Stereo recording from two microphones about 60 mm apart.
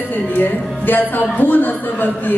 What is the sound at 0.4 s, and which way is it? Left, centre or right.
Music, left.